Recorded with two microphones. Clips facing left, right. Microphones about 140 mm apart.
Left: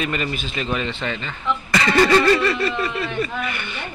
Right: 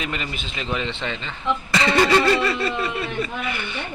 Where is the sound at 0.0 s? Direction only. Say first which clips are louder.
Left 5 dB; 20° right (ahead or behind).